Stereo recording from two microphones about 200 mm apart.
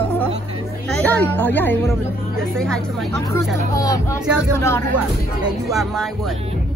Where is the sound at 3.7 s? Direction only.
15° left (ahead or behind).